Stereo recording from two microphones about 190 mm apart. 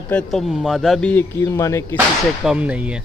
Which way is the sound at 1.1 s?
15° left (ahead or behind).